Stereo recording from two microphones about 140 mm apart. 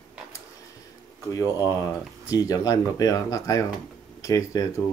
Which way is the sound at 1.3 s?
25° left (ahead or behind).